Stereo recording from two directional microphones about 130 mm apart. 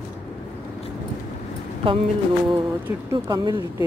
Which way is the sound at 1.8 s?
45° right (ahead or behind).